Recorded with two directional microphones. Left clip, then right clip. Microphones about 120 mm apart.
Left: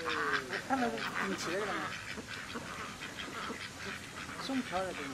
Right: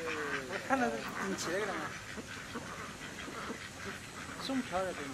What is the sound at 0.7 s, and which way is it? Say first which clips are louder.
Speech: right 2 dB; 15° right (ahead or behind).